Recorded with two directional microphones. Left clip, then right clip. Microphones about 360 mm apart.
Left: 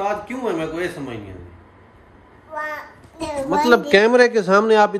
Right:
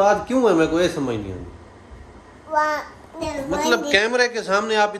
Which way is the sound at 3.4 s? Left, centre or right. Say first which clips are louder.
Left 5 dB; centre.